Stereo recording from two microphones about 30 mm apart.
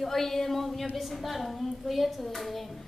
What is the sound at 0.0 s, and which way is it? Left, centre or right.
A woman's voice, centre.